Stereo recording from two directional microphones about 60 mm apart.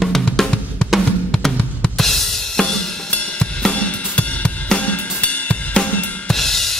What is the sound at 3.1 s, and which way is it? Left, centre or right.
Cymbal, centre.